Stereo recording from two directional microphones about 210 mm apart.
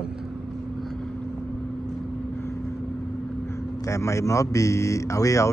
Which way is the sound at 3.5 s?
15° left (ahead or behind).